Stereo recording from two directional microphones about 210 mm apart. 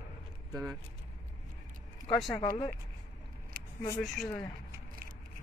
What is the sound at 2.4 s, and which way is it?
Speech, 25° left (ahead or behind).